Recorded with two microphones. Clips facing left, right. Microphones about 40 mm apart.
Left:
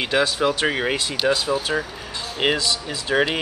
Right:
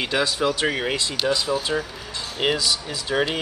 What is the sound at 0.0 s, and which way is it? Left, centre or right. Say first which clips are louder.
Speech: left 2 dB; centre.